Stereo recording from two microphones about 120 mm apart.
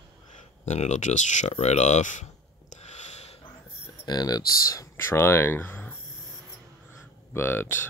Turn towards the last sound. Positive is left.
turn(degrees=20)  # may be behind; listen again after turning